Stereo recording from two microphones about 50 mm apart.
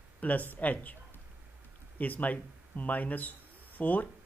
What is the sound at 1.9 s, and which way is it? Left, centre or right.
Speech, left.